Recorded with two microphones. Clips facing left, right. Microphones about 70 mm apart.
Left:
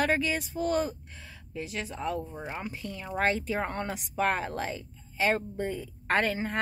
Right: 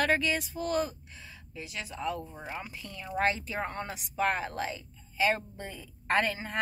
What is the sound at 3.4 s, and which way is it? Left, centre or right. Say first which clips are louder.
Speech: left 4 dB; left.